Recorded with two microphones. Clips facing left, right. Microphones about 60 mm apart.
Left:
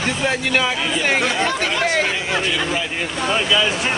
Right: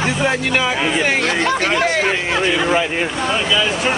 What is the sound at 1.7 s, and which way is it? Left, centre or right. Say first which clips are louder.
Speech: right 2 dB; centre.